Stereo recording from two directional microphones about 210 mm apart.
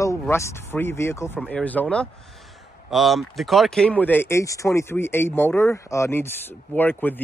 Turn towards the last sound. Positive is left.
turn(degrees=10)  # may be behind; listen again after turning